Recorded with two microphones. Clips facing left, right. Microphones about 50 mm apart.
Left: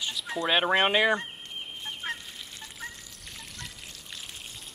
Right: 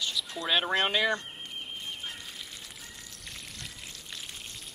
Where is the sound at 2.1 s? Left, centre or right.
Left.